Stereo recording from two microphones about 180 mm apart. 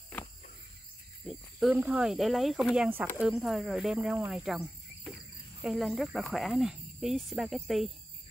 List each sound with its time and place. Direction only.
1.2 s speech: 5° right (ahead or behind)